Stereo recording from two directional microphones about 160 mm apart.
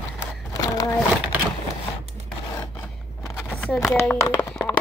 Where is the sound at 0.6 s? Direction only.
20° left (ahead or behind).